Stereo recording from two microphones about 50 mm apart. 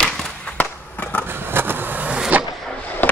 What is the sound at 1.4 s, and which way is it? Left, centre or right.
Vehicle, right.